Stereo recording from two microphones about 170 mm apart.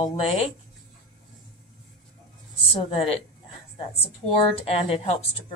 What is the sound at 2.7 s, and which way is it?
Speech, 35° left (ahead or behind).